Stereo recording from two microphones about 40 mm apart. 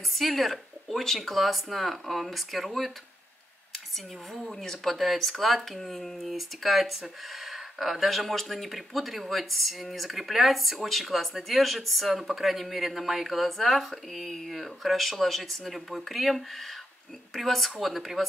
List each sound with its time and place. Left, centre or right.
0.1 s speech: centre
4.3 s speech: centre